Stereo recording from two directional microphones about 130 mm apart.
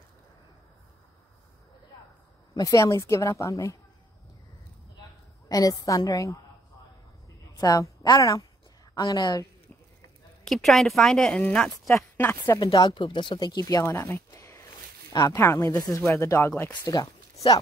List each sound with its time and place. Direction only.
2.5 s speech: 25° left (ahead or behind)
5.5 s speech: 25° left (ahead or behind)
7.5 s a woman's voice: 25° left (ahead or behind)
10.4 s a woman's voice: centre (ahead or behind)
12.2 s speech: 15° left (ahead or behind)
12.5 s speech: 35° left (ahead or behind)